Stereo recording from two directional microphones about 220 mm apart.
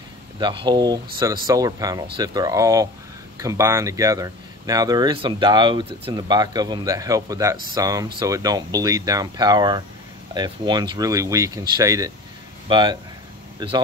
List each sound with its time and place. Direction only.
0.4 s speech: 20° right (ahead or behind)